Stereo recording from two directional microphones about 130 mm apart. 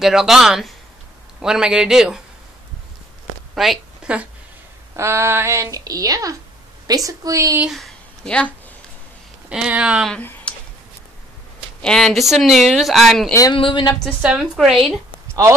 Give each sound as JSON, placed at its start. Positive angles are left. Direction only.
{"t": 0.0, "sound": "speech", "side_deg": -5}
{"t": 3.5, "sound": "a woman's voice", "side_deg": 0}
{"t": 4.9, "sound": "speech", "side_deg": -20}
{"t": 7.6, "sound": "a sound", "side_deg": 0}
{"t": 9.5, "sound": "speech", "side_deg": -5}
{"t": 10.1, "sound": "speech", "side_deg": 10}
{"t": 11.8, "sound": "speech", "side_deg": 5}
{"t": 13.3, "sound": "speech", "side_deg": 25}
{"t": 13.6, "sound": "speech", "side_deg": 40}
{"t": 14.2, "sound": "speech", "side_deg": -5}